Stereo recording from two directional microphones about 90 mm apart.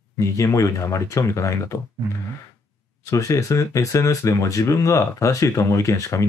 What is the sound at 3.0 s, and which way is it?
Speech, 40° left (ahead or behind).